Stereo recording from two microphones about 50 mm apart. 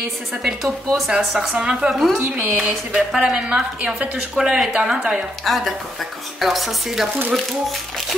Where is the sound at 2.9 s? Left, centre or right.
Centre.